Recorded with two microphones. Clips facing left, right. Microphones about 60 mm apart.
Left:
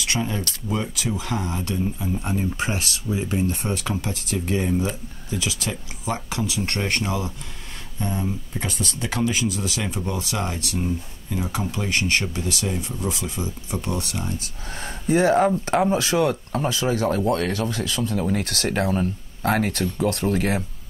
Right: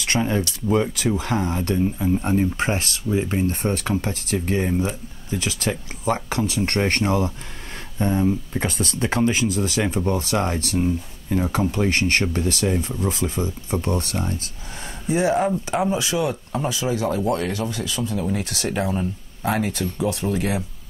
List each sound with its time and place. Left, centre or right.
0.0 s speech: right
14.8 s speech: left